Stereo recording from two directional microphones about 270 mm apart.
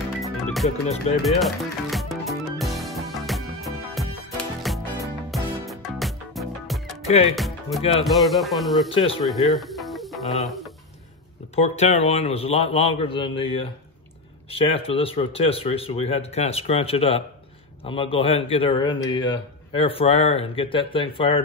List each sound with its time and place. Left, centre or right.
0.2 s music: centre
1.2 s speech: centre
2.6 s music: centre
7.1 s music: left
7.3 s music: centre
8.0 s speech: centre
8.9 s a man's voice: left
9.2 s music: centre
11.5 s a man's voice: left